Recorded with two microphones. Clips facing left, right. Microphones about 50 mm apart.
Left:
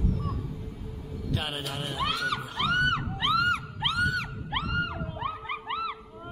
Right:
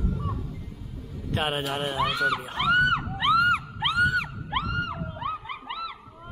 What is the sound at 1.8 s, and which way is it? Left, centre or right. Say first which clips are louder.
Speech: right 4 dB; centre.